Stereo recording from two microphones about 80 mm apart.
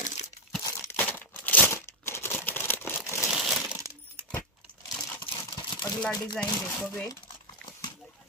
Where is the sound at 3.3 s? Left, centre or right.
Centre.